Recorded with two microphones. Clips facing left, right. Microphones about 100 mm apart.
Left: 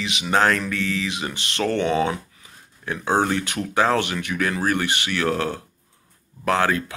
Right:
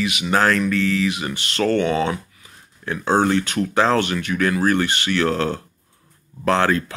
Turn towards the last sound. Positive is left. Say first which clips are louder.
# right 2 dB
turn(degrees=15)  # may be behind; listen again after turning